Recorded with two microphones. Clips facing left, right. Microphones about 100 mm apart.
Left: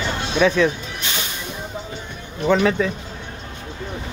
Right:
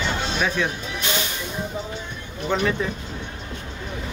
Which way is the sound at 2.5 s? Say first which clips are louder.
Left 6 dB; 90° left.